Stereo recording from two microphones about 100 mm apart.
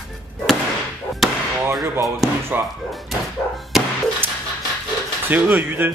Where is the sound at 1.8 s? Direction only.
25° right (ahead or behind).